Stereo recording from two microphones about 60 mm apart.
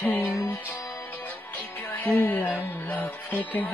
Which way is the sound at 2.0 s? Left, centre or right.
Left.